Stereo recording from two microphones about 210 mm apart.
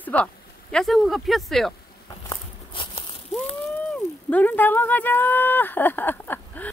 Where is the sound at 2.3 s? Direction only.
25° left (ahead or behind).